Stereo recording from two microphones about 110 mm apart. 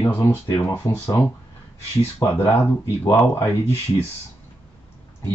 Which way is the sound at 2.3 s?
20° left (ahead or behind).